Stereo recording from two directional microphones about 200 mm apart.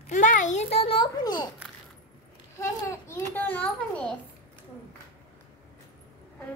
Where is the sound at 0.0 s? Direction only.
40° left (ahead or behind); by 1.5 s 20° left (ahead or behind).